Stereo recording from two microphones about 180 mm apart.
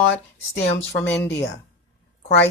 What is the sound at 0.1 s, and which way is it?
Speech, 75° left (ahead or behind).